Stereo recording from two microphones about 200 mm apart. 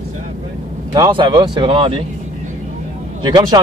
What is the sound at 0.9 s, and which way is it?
A man's voice, 20° right (ahead or behind).